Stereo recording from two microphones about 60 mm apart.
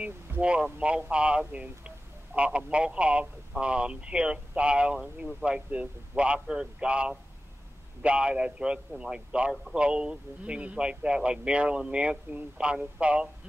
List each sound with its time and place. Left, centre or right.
0.0 s speech: centre